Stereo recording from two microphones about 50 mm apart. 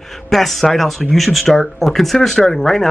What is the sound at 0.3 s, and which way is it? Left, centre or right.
Speech, centre.